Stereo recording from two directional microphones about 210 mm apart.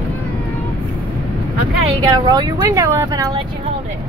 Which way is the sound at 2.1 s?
20° right (ahead or behind).